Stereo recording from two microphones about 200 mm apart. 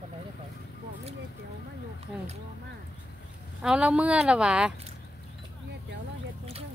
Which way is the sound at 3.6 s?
5° right (ahead or behind).